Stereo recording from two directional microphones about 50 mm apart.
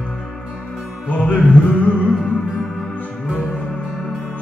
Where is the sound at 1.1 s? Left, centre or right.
Left.